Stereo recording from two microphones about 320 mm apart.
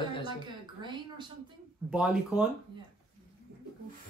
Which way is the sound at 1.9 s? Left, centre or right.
Centre.